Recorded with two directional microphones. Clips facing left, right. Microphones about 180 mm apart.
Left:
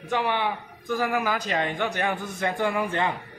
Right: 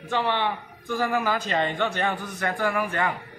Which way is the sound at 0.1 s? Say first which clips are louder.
Even; 10° left (ahead or behind).